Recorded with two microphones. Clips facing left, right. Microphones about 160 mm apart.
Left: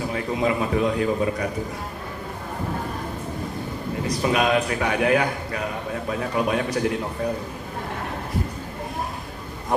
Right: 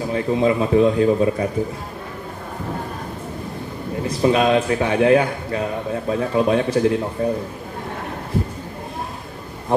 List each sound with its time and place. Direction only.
0.1 s a man's voice: 30° right (ahead or behind)
4.1 s a man's voice: 30° right (ahead or behind)
9.7 s speech: 30° right (ahead or behind)